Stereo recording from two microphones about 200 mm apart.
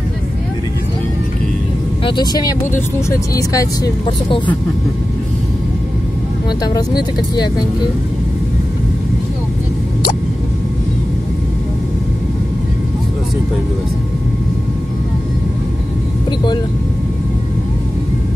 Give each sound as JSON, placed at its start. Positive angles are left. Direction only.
{"t": 2.0, "sound": "speech", "side_deg": 20}
{"t": 6.6, "sound": "speech", "side_deg": 20}